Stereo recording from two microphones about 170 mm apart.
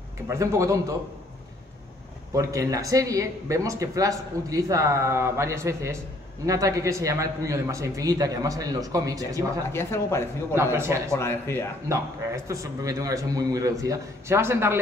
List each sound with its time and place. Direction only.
0.3 s speech: 15° right (ahead or behind)
2.3 s speech: 20° right (ahead or behind)
9.7 s speech: 15° left (ahead or behind)
10.5 s a man's voice: 15° right (ahead or behind)
11.1 s speech: 15° left (ahead or behind)
12.4 s speech: 20° right (ahead or behind)